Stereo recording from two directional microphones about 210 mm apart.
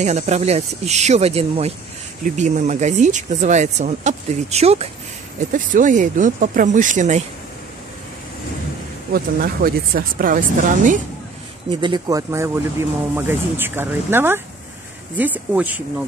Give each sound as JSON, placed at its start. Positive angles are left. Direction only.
{"t": 0.0, "sound": "speech", "side_deg": -30}
{"t": 9.1, "sound": "speech", "side_deg": -45}
{"t": 11.8, "sound": "speech", "side_deg": -20}